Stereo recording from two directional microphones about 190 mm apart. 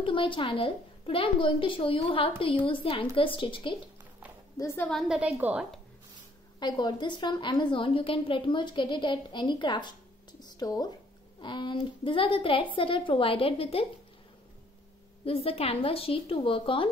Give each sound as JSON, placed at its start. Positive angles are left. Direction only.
{"t": 0.0, "sound": "a woman's voice", "side_deg": 25}
{"t": 4.6, "sound": "a woman's voice", "side_deg": 15}
{"t": 4.9, "sound": "a woman's voice", "side_deg": -5}
{"t": 6.6, "sound": "a woman's voice", "side_deg": 25}
{"t": 15.2, "sound": "a woman's voice", "side_deg": 30}